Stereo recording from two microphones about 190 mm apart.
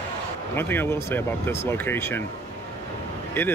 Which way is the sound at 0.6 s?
10° left (ahead or behind).